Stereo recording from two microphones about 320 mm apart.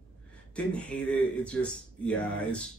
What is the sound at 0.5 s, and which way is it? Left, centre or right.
Speech, centre.